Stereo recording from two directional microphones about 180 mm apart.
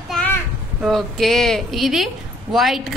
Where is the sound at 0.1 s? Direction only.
5° left (ahead or behind).